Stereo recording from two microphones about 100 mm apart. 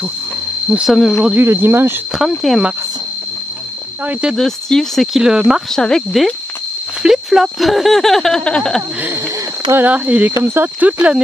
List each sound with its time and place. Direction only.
0.7 s speech: 10° right (ahead or behind)
1.4 s speech: 25° right (ahead or behind)
2.1 s speech: centre (ahead or behind)
4.0 s speech: 10° right (ahead or behind)
4.4 s speech: 5° left (ahead or behind)
5.7 s speech: 5° left (ahead or behind)
9.7 s speech: 20° right (ahead or behind)